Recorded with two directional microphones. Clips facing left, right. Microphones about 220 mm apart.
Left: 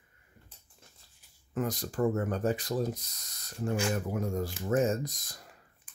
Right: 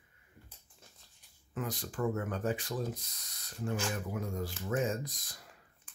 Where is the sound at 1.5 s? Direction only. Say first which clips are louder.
Left 6 dB; 45° left (ahead or behind).